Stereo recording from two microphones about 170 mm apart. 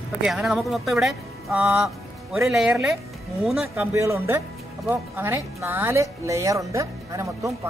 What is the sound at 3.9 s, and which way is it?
Speech, 15° right (ahead or behind).